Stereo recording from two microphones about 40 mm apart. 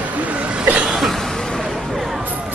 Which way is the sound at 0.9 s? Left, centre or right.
Centre.